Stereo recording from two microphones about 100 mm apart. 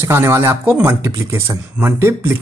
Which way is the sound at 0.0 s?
25° right (ahead or behind).